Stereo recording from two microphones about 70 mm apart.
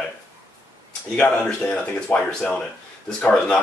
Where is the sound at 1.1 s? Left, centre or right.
Left.